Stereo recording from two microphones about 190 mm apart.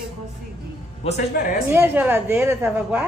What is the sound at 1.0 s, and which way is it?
Speech, 35° left (ahead or behind).